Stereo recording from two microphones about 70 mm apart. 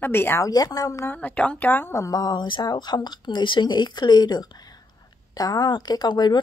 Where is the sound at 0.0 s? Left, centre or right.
Left.